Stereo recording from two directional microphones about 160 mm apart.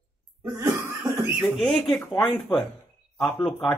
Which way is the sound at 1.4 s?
Centre (ahead or behind).